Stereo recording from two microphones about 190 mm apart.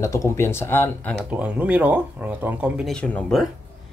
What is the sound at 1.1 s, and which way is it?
Speech, 5° right (ahead or behind).